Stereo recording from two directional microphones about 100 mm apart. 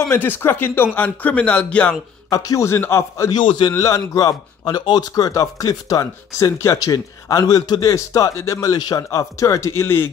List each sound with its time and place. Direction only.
0.0 s a man's voice: 20° left (ahead or behind)
2.2 s a man's voice: 35° left (ahead or behind)
3.3 s a man's voice: 55° left (ahead or behind)
3.7 s speech: 30° left (ahead or behind)